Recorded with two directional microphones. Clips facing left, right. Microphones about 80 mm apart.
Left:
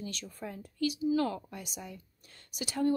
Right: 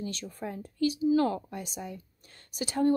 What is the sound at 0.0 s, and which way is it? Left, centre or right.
Speech, right.